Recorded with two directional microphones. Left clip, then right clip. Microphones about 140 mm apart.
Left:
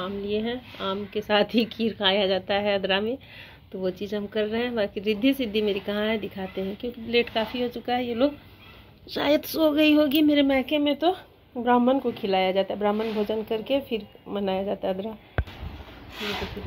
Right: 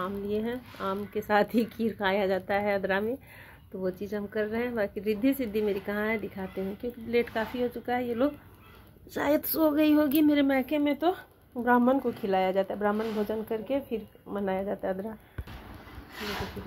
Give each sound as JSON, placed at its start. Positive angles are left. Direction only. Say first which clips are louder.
{"t": 0.0, "sound": "a woman's voice", "louder": "left 3 dB", "side_deg": -5}
{"t": 6.2, "sound": "speech", "louder": "left 4 dB", "side_deg": 20}
{"t": 6.8, "sound": "speech", "louder": "left 4 dB", "side_deg": 5}